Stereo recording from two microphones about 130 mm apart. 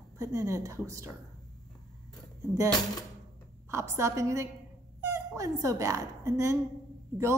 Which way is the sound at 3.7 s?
20° right (ahead or behind).